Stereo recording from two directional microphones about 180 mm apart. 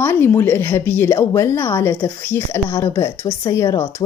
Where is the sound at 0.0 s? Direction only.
10° left (ahead or behind).